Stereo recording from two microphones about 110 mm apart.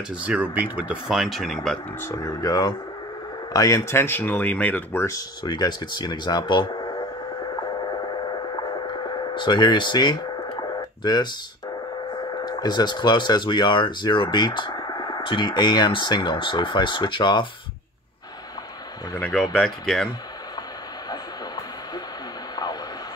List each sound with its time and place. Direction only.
0.1 s speech: 10° right (ahead or behind)
2.0 s speech: 30° left (ahead or behind); by 5.0 s 15° left (ahead or behind)
5.0 s speech: 35° left (ahead or behind)
8.5 s a sound: 40° left (ahead or behind)
12.4 s speech: 40° left (ahead or behind)
19.3 s speech: 5° left (ahead or behind)